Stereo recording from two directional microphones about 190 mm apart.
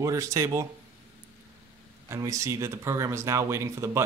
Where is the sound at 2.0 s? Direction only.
15° right (ahead or behind).